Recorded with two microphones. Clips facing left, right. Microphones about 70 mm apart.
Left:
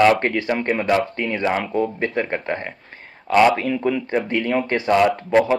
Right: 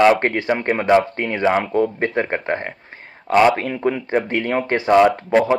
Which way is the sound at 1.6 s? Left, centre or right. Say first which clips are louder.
Right 3 dB; right.